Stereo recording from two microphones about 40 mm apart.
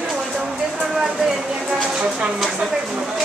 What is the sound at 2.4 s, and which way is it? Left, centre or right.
Speech, centre.